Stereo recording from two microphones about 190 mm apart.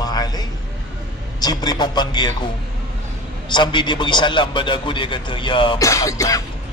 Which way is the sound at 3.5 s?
25° left (ahead or behind).